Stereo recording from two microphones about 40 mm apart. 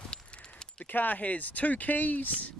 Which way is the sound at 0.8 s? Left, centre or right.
Left.